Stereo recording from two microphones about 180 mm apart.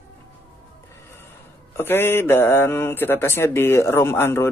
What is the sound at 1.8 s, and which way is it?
A man's voice, 15° left (ahead or behind).